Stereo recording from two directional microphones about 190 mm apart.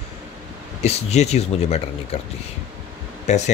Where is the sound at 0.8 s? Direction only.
35° left (ahead or behind).